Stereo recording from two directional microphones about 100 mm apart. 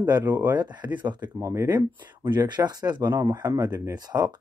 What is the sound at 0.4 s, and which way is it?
Speech, 45° right (ahead or behind).